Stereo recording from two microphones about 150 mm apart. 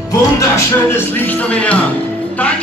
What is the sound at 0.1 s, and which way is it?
Speech, 15° left (ahead or behind).